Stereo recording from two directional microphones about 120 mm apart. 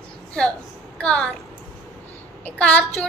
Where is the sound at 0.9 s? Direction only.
10° left (ahead or behind).